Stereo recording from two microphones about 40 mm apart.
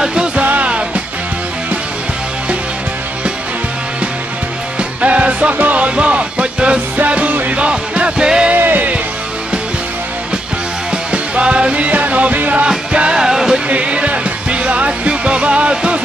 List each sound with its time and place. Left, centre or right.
0.0 s music: right
0.4 s music: right
0.7 s music: right
5.0 s music: right
5.9 s music: right
7.0 s music: right
7.5 s music: right
8.5 s music: right
10.9 s music: right
12.6 s music: right
13.7 s music: right